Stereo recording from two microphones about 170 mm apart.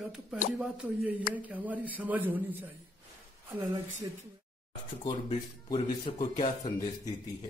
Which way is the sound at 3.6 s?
20° right (ahead or behind).